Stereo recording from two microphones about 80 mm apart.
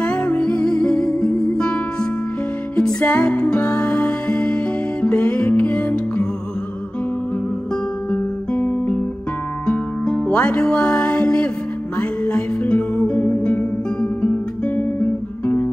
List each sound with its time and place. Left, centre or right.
0.0 s music: centre
8.1 s guitar: centre
9.7 s music: centre
14.2 s guitar: centre